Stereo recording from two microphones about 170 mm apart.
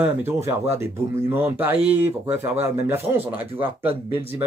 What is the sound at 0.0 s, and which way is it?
Speech, 15° right (ahead or behind).